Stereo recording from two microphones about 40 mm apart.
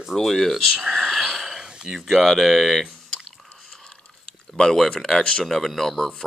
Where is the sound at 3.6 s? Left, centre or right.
Centre.